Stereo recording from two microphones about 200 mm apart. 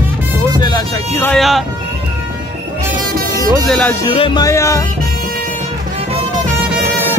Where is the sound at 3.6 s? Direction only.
5° left (ahead or behind).